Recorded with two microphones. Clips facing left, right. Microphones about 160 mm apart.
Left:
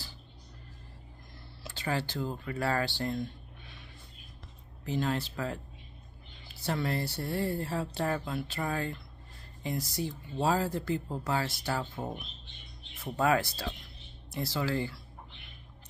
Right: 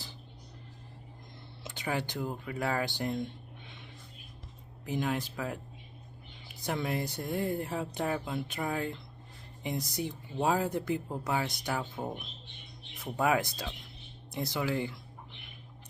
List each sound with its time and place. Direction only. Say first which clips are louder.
1.6 s speech: left 1 dB; 15° right (ahead or behind)
4.8 s speech: left 1 dB; 10° right (ahead or behind)
6.6 s speech: left 1 dB; 15° right (ahead or behind)